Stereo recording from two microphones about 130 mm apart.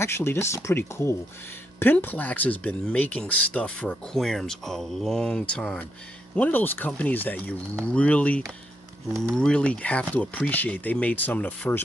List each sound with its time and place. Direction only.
0.0 s speech: 20° left (ahead or behind)